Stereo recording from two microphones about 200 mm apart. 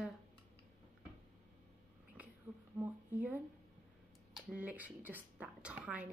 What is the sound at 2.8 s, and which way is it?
Speech, 10° right (ahead or behind).